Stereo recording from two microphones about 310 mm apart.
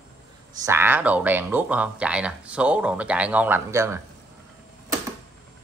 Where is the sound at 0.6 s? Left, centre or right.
Centre.